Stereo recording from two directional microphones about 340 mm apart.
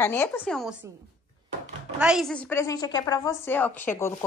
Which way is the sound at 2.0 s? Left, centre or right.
Centre.